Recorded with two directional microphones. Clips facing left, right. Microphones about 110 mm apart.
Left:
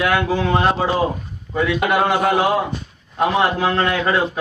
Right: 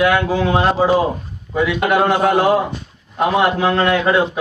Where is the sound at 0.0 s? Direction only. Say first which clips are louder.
Right 3 dB; centre (ahead or behind).